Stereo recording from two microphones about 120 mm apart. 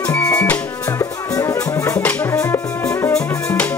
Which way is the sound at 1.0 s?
25° left (ahead or behind).